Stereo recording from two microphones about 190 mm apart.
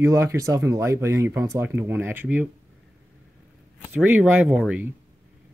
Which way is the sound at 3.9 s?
5° right (ahead or behind).